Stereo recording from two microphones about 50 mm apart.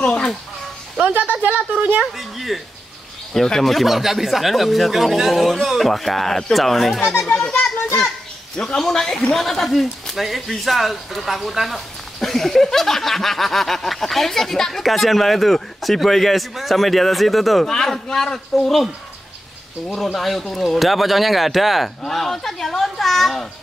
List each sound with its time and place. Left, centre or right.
1.1 s speech: right
2.1 s speech: centre
8.5 s speech: centre
19.9 s speech: centre